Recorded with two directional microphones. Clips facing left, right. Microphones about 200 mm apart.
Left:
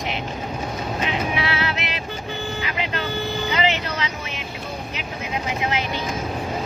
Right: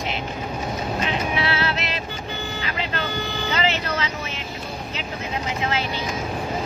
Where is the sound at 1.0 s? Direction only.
15° left (ahead or behind).